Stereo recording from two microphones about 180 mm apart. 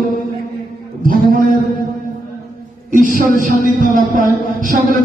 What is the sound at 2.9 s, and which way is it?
Music, 50° right (ahead or behind).